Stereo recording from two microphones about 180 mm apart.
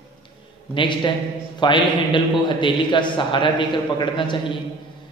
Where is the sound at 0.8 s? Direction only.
25° left (ahead or behind).